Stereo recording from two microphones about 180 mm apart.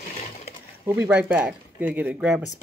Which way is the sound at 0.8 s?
10° right (ahead or behind).